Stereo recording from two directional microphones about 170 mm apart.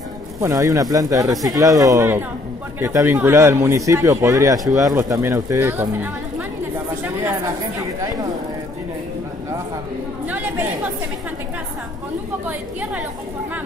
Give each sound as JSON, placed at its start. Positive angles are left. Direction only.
{"t": 0.4, "sound": "speech", "side_deg": -20}
{"t": 8.0, "sound": "speech", "side_deg": -20}
{"t": 10.2, "sound": "chatter", "side_deg": -10}